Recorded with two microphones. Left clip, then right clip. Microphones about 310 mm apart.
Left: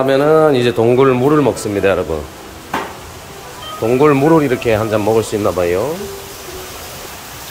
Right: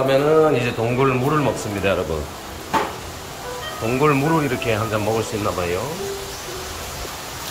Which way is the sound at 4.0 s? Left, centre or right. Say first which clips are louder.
Left 7 dB; centre.